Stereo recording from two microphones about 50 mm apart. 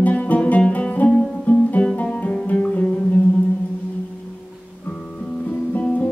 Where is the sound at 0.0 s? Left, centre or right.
Left.